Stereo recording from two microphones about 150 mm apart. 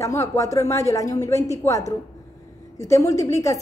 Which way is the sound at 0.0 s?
20° left (ahead or behind).